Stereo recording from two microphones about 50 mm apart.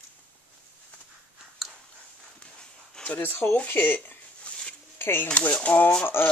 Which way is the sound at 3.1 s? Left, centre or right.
Left.